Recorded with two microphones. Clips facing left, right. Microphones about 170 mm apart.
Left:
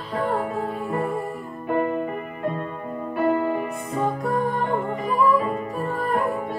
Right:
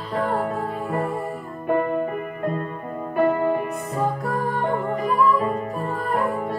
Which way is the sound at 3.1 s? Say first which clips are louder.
Right 2 dB; 50° right (ahead or behind).